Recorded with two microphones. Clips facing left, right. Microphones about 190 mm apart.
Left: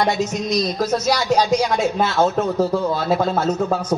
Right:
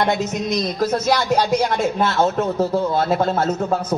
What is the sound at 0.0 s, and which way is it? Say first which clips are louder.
A man's voice: even; 55° right (ahead or behind).